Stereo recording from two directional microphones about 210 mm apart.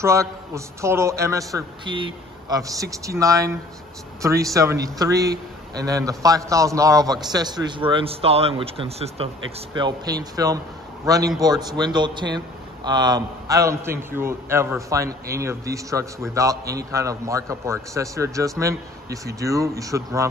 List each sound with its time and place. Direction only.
0.0 s a man's voice: 15° right (ahead or behind)